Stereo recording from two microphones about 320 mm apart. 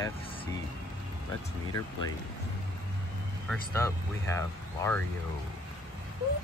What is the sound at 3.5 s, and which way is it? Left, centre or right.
Speech, centre.